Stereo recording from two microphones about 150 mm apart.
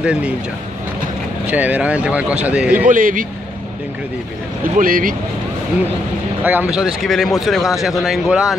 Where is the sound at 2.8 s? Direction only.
65° right (ahead or behind).